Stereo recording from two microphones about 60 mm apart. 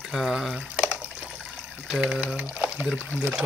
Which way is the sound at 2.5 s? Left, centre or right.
Right.